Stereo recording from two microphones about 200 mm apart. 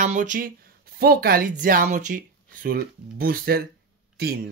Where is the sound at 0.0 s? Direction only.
40° right (ahead or behind).